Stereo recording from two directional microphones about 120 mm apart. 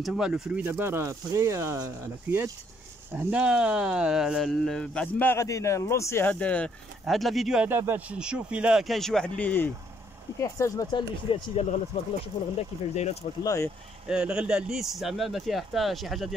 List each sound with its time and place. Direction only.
0.0 s speech: 5° right (ahead or behind)
0.7 s speech: 20° right (ahead or behind)
3.2 s speech: 10° right (ahead or behind); by 5.3 s 5° left (ahead or behind)
5.3 s a man's voice: 25° left (ahead or behind)
6.3 s speech: 10° left (ahead or behind)
7.6 s speech: 15° right (ahead or behind); by 9.7 s 15° left (ahead or behind)
10.4 s a man's voice: 30° left (ahead or behind)
11.3 s speech: 50° left (ahead or behind)
12.9 s speech: 65° left (ahead or behind)
13.4 s a man's voice: 30° left (ahead or behind)
14.0 s speech: 10° right (ahead or behind)